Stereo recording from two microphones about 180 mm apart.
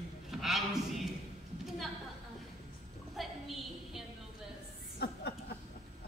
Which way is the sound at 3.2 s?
Centre (ahead or behind).